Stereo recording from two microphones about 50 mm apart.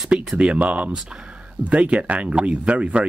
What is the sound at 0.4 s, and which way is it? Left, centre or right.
Speech, right.